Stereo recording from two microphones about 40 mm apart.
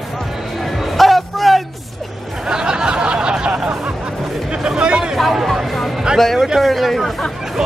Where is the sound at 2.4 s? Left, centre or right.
Centre.